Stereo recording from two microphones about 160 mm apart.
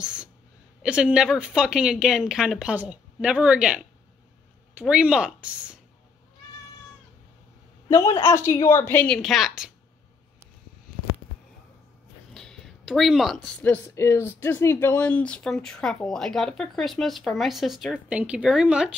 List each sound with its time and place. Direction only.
0.0 s a sound: 5° right (ahead or behind)
0.8 s speech: 5° right (ahead or behind)
7.9 s a woman's voice: 20° left (ahead or behind); by 9.7 s centre (ahead or behind)
12.4 s speech: centre (ahead or behind)